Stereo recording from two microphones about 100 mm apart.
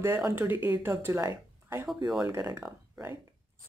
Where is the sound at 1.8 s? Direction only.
5° right (ahead or behind).